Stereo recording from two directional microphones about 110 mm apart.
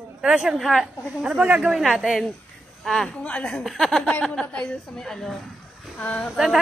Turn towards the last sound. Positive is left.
turn(degrees=0)  # may be behind; listen again after turning